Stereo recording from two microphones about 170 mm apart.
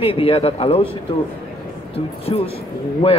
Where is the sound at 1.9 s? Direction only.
35° left (ahead or behind).